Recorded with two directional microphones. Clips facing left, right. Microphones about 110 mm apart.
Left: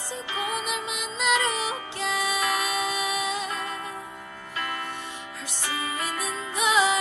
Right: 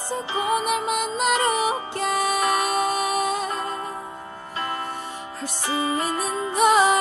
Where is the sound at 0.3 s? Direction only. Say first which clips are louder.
Right 7 dB; 40° right (ahead or behind).